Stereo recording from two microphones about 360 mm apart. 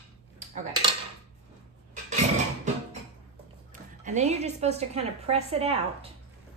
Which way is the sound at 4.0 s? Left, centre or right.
Centre.